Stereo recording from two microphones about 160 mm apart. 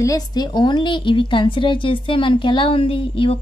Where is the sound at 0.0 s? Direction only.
25° left (ahead or behind).